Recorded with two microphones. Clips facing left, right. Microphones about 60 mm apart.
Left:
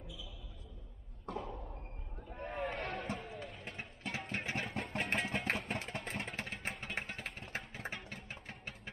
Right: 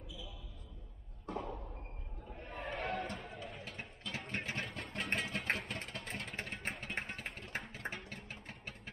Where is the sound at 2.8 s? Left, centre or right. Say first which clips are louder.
Right 2 dB; centre.